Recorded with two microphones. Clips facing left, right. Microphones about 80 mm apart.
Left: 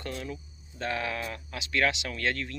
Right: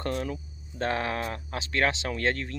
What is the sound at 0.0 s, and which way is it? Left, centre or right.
Speech, right.